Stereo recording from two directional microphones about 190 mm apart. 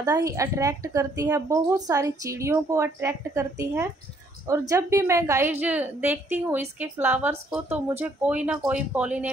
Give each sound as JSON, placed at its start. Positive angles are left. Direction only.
{"t": 0.0, "sound": "a woman's voice", "side_deg": -20}